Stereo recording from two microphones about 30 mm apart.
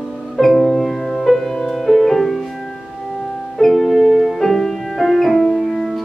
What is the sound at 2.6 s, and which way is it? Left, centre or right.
Music, centre.